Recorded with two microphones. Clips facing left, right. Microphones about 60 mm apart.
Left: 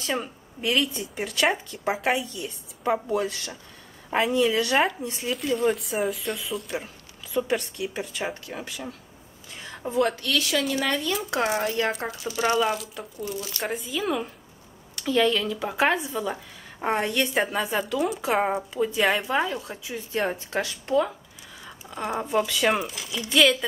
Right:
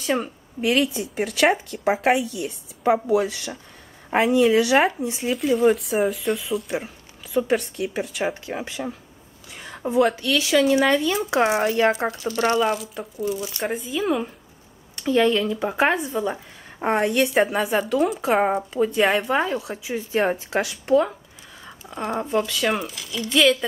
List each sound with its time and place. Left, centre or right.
0.1 s speech: centre
8.5 s speech: right
9.5 s a woman's voice: centre; by 11.9 s right
11.9 s speech: centre
21.6 s a sound: centre
22.1 s speech: centre